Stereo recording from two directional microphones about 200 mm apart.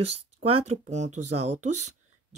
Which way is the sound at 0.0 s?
30° right (ahead or behind).